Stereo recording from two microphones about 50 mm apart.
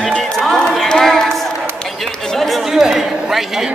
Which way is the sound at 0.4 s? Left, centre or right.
Centre.